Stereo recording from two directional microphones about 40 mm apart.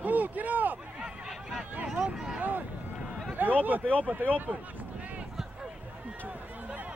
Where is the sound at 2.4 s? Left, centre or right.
Right.